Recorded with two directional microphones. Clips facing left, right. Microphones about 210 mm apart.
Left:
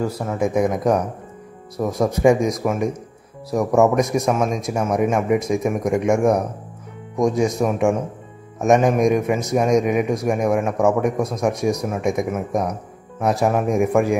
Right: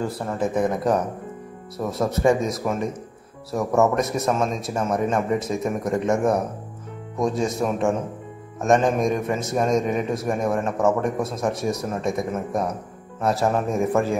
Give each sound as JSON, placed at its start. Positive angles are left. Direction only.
{"t": 0.0, "sound": "speech", "side_deg": 5}